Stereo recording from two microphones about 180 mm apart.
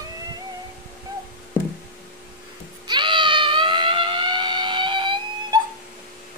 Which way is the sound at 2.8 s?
25° right (ahead or behind).